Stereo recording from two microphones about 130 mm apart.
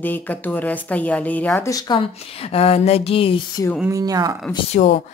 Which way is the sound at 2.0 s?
50° left (ahead or behind).